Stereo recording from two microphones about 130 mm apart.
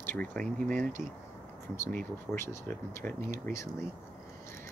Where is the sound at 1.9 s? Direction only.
15° left (ahead or behind).